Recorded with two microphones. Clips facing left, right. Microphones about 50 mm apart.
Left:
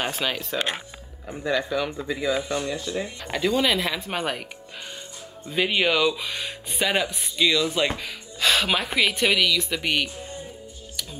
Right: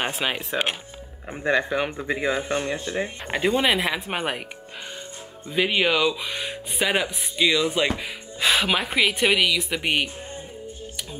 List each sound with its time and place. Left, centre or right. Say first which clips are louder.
0.0 s speech: right 1 dB; right
5.5 s speech: right 1 dB; centre
8.4 s music: even; centre
8.6 s speech: right 1 dB; centre